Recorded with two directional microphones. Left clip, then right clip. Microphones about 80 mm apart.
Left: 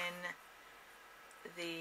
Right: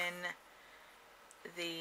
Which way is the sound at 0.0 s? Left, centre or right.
Right.